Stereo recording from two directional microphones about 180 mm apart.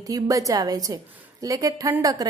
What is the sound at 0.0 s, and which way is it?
A woman's voice, 20° right (ahead or behind).